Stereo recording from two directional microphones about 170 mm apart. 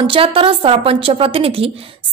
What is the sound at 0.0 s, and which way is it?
A woman's voice, 30° right (ahead or behind).